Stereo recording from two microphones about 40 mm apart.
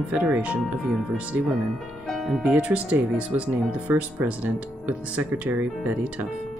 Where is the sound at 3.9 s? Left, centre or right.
Right.